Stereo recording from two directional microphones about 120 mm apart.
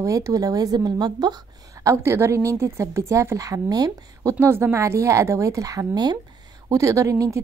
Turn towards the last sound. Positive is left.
turn(degrees=-25)  # may be behind; listen again after turning